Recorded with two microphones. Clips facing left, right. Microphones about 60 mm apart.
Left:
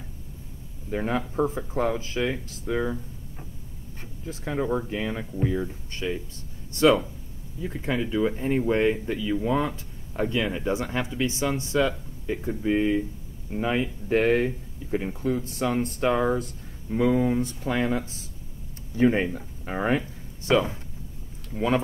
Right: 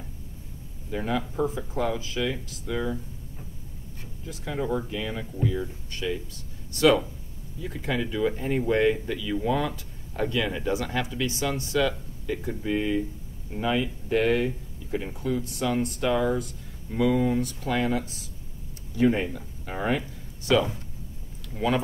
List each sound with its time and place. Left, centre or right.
0.8 s speech: left
4.3 s speech: left
6.7 s speech: left